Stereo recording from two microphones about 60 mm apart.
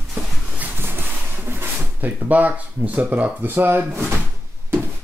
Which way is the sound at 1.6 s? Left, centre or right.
Right.